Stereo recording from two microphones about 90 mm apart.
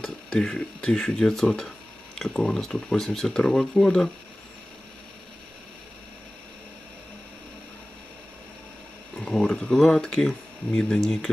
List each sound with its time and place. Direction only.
0.0 s speech: 5° left (ahead or behind)
9.1 s speech: 5° left (ahead or behind)